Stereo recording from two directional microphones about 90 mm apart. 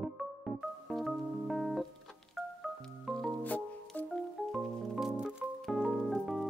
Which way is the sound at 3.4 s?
20° left (ahead or behind).